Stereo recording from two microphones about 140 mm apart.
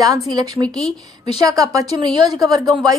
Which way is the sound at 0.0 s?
25° right (ahead or behind).